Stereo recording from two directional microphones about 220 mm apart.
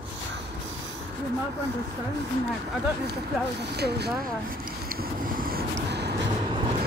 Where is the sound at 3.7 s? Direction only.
50° right (ahead or behind).